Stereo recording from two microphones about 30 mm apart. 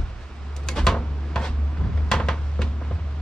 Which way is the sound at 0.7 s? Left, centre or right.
Centre.